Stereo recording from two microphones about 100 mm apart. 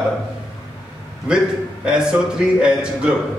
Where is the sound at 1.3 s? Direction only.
10° right (ahead or behind).